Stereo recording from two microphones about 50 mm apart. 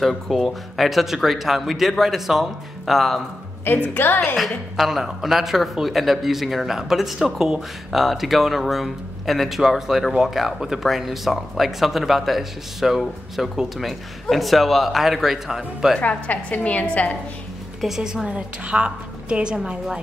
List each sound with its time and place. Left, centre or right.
0.0 s speech: centre
3.6 s a woman's voice: left
4.7 s speech: centre
16.0 s a woman's voice: left
17.7 s a woman's voice: centre